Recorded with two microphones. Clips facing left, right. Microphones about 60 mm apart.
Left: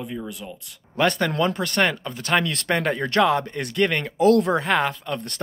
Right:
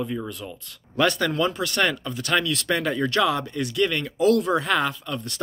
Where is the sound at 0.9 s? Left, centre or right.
Left.